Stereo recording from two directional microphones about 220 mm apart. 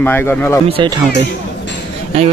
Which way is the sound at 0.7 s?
25° right (ahead or behind).